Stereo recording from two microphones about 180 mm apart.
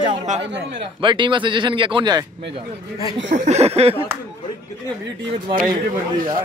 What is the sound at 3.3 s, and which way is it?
Speech, 35° right (ahead or behind).